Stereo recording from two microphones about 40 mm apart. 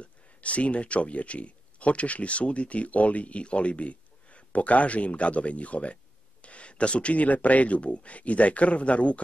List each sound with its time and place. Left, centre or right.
0.0 s speech: left